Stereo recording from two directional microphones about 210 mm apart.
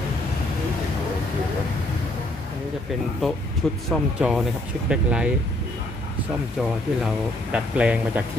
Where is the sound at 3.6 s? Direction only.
5° left (ahead or behind).